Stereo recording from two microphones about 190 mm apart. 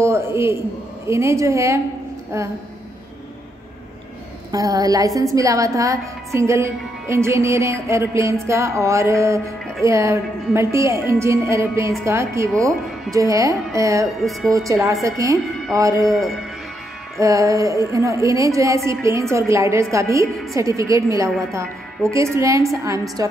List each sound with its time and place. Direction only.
0.0 s a man's voice: 15° right (ahead or behind)
1.0 s music: 15° right (ahead or behind)
4.5 s music: 15° right (ahead or behind)
17.2 s music: 15° right (ahead or behind)